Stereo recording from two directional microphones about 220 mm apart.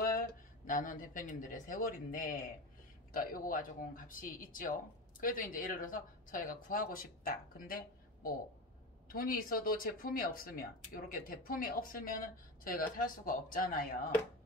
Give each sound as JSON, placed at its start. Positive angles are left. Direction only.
{"t": 0.0, "sound": "speech", "side_deg": 40}
{"t": 9.1, "sound": "speech", "side_deg": 40}